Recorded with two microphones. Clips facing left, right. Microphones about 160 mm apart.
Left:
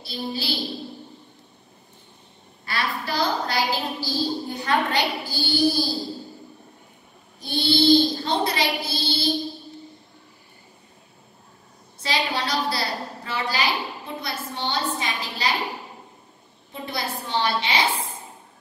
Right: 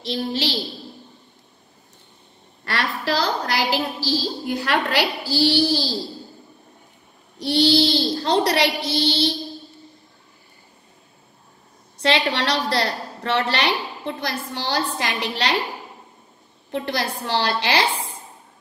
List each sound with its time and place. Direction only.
0.0 s child singing: 90° right
2.6 s a woman's voice: 90° right
7.3 s child singing: 90° right
12.0 s a woman's voice: 85° right
16.7 s a woman's voice: 85° right